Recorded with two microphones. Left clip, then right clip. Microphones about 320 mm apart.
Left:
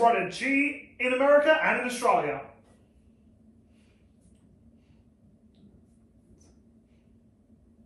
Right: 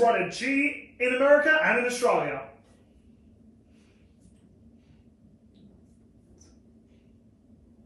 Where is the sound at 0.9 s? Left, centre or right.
Centre.